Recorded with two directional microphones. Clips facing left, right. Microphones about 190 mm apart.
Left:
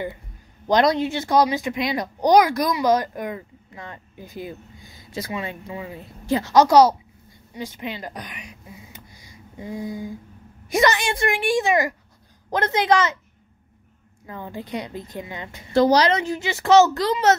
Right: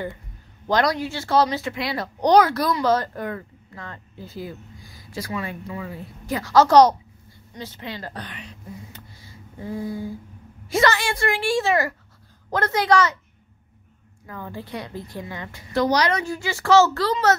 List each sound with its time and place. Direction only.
0.7 s speech: 20° left (ahead or behind)
7.5 s a sound: 15° left (ahead or behind)
10.7 s a woman's voice: 15° left (ahead or behind)
14.2 s a woman's voice: 20° left (ahead or behind)